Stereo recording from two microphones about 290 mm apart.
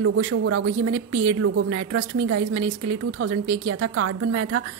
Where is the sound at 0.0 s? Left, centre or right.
Right.